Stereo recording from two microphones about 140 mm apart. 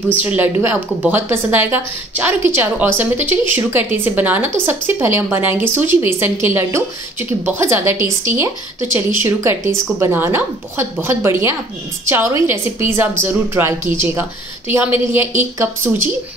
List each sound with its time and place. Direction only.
0.2 s a woman's voice: 15° right (ahead or behind)